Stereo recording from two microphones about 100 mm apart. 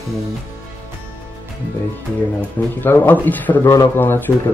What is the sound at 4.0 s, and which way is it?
Speech, 20° left (ahead or behind).